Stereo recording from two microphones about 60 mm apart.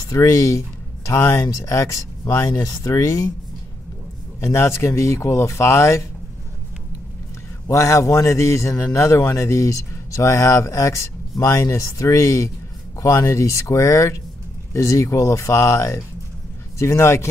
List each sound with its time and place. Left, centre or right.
0.0 s speech: left
4.4 s speech: left
7.6 s speech: left